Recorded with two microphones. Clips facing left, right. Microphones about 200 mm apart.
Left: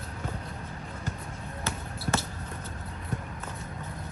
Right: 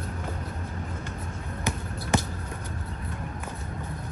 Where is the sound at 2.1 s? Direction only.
15° right (ahead or behind).